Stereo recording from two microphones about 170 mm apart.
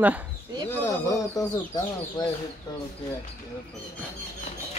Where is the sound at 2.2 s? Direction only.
25° left (ahead or behind).